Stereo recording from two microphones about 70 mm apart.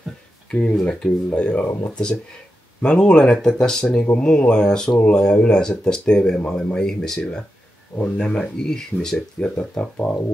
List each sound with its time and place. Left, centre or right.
0.5 s speech: centre
2.8 s speech: centre
7.2 s speech: centre